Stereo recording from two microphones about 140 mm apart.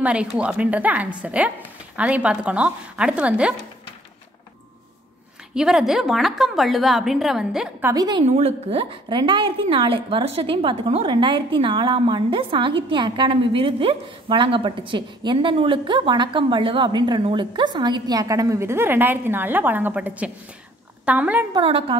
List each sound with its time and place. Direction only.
0.0 s speech: 10° right (ahead or behind)
5.5 s a woman's voice: 5° right (ahead or behind)
7.8 s a woman's voice: 25° right (ahead or behind)
8.3 s a woman's voice: 45° right (ahead or behind); by 21.5 s 10° right (ahead or behind)
21.5 s a woman's voice: 40° right (ahead or behind)